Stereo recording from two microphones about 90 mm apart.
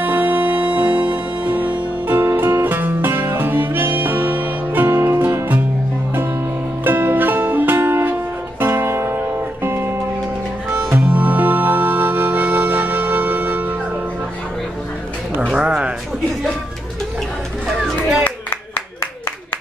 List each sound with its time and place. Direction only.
0.0 s music: 20° right (ahead or behind)
6.8 s music: 20° right (ahead or behind)
11.0 s music: 15° right (ahead or behind)
15.4 s a sound: 5° right (ahead or behind)
17.6 s music: 5° right (ahead or behind)